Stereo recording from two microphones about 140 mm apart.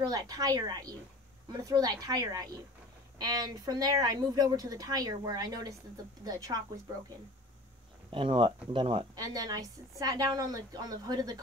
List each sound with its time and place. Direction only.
0.0 s a woman's voice: 30° right (ahead or behind)
8.1 s a woman's voice: 40° right (ahead or behind)